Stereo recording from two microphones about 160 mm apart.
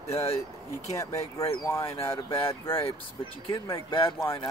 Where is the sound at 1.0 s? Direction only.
20° left (ahead or behind).